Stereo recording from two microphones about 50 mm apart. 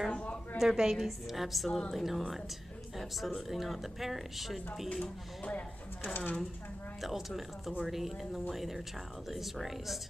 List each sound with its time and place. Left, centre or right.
0.1 s a sound: left
0.6 s a woman's voice: centre
5.0 s speech: left
7.0 s a woman's voice: centre